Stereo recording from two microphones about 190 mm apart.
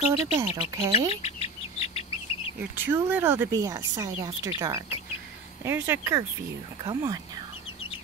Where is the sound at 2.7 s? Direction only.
10° right (ahead or behind).